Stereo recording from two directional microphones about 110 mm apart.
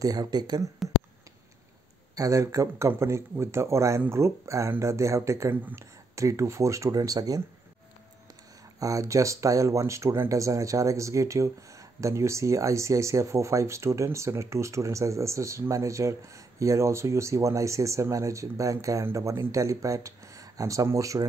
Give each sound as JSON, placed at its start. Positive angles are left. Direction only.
{"t": 0.0, "sound": "speech", "side_deg": -35}
{"t": 2.1, "sound": "speech", "side_deg": -30}
{"t": 8.7, "sound": "speech", "side_deg": -30}